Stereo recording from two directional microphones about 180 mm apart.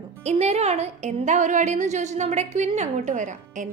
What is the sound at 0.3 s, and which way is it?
A woman's voice, 35° right (ahead or behind).